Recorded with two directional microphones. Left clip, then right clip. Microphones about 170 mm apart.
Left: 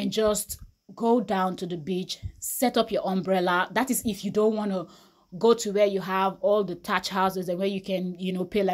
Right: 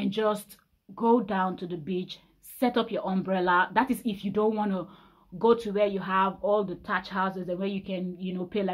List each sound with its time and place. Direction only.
0.0 s speech: 30° left (ahead or behind)